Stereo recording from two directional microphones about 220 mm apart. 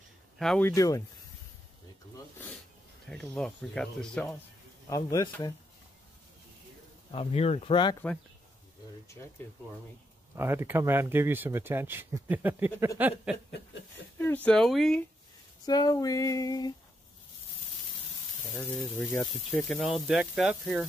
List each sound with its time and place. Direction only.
0.4 s speech: 5° left (ahead or behind)
3.1 s speech: 5° left (ahead or behind)
4.8 s speech: 15° left (ahead or behind)
7.1 s speech: 25° left (ahead or behind)
10.3 s speech: 10° right (ahead or behind)
14.1 s speech: 10° left (ahead or behind)
15.6 s speech: 20° left (ahead or behind)
18.5 s speech: 10° left (ahead or behind)